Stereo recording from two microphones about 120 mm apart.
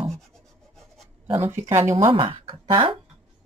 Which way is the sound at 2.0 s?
45° right (ahead or behind).